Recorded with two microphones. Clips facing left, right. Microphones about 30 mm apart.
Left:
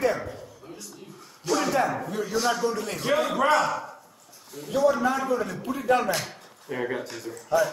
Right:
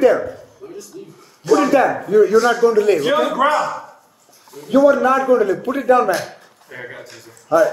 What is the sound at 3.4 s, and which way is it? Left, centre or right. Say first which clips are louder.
A man's voice: right 5 dB; centre.